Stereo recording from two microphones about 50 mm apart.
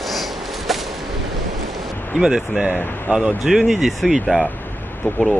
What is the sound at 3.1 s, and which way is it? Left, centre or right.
Speech, centre.